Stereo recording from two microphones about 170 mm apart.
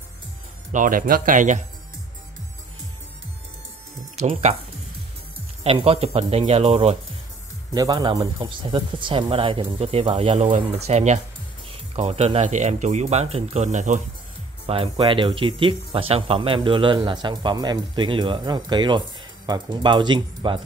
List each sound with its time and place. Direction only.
0.7 s speech: 50° right (ahead or behind)
4.2 s speech: 40° right (ahead or behind)
5.6 s speech: 35° right (ahead or behind)
7.7 s speech: 25° right (ahead or behind); by 14.0 s 45° right (ahead or behind)
14.7 s speech: 30° right (ahead or behind)